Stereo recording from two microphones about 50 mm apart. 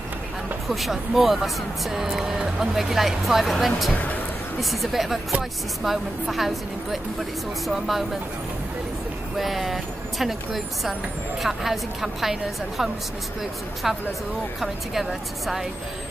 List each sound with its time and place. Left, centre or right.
0.7 s speech: centre
3.9 s speech: left
4.6 s speech: centre
9.4 s speech: centre